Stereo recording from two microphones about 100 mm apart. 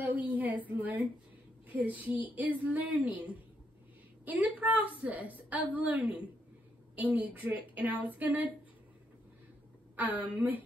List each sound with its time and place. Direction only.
0.0 s a sound: 15° right (ahead or behind)
0.7 s a woman's voice: 15° right (ahead or behind)
9.9 s a woman's voice: 15° right (ahead or behind)